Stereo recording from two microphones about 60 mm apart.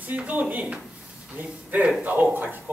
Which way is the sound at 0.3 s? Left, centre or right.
Right.